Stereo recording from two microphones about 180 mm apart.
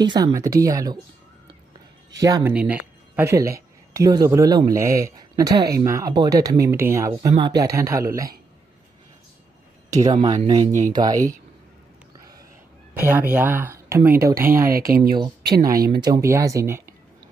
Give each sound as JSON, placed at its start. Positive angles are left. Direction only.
{"t": 0.0, "sound": "speech", "side_deg": -20}
{"t": 2.1, "sound": "speech", "side_deg": -20}
{"t": 2.5, "sound": "speech", "side_deg": -5}
{"t": 9.8, "sound": "speech", "side_deg": -20}
{"t": 10.1, "sound": "speech", "side_deg": -30}
{"t": 10.8, "sound": "speech", "side_deg": -20}
{"t": 13.0, "sound": "speech", "side_deg": -10}
{"t": 14.9, "sound": "speech", "side_deg": -55}
{"t": 16.0, "sound": "speech", "side_deg": -20}